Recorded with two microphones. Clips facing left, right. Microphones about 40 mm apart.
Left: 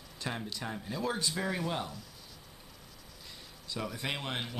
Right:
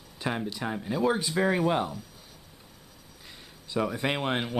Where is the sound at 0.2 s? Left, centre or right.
Centre.